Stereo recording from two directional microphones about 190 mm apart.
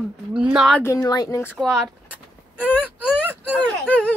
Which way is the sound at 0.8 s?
15° left (ahead or behind).